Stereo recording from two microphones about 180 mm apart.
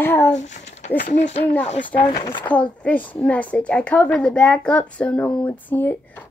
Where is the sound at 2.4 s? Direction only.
5° left (ahead or behind).